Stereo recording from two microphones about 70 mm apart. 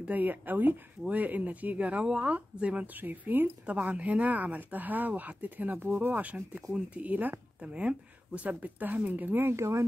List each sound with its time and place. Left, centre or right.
0.0 s speech: right
3.6 s speech: centre; by 9.8 s right